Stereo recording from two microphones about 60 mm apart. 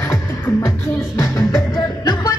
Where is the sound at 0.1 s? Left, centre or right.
Left.